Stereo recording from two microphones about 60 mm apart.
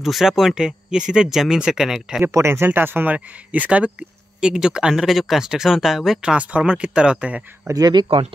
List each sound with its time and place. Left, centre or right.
0.0 s speech: centre
2.3 s speech: right
4.4 s speech: centre
6.3 s speech: centre
7.7 s speech: right